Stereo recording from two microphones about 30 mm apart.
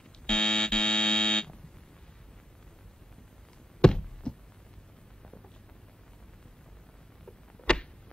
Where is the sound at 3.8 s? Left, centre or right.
Left.